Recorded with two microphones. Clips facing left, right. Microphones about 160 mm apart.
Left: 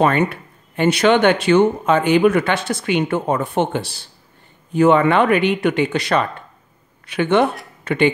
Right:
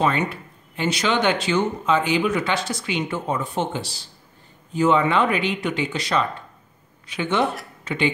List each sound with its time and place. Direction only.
0.0 s speech: 60° left (ahead or behind)